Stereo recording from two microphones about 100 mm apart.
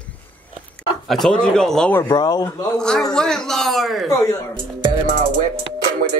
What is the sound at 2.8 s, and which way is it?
Speech, 5° left (ahead or behind).